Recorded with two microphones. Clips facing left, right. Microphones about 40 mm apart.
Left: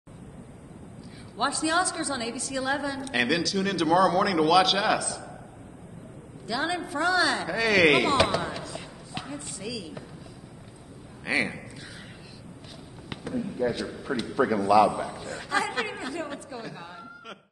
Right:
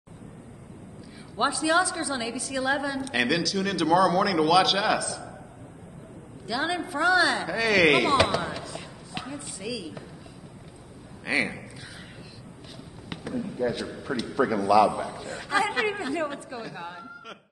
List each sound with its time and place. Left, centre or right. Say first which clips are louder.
1.3 s a woman's voice: right 2 dB; centre
6.4 s a woman's voice: right 1 dB; centre
8.5 s a sound: even; centre
9.3 s a woman's voice: right 2 dB; centre
11.2 s a woman's voice: even; centre
13.1 s a man's voice: even; centre
15.5 s a woman's voice: right 3 dB; centre